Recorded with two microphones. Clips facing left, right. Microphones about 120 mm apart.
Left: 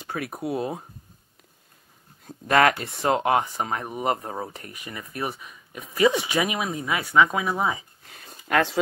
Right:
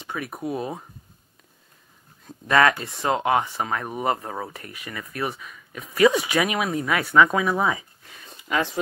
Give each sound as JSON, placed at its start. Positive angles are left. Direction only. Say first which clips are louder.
{"t": 0.0, "sound": "a sound", "louder": "left 1 dB", "side_deg": 45}
{"t": 0.4, "sound": "speech", "louder": "left 1 dB", "side_deg": 5}
{"t": 2.2, "sound": "speech", "louder": "even", "side_deg": 40}
{"t": 5.3, "sound": "speech", "louder": "right 1 dB", "side_deg": 5}
{"t": 5.9, "sound": "speech", "louder": "right 2 dB", "side_deg": 25}
{"t": 8.1, "sound": "a sound", "louder": "even", "side_deg": 45}
{"t": 8.5, "sound": "speech", "louder": "left 2 dB", "side_deg": 60}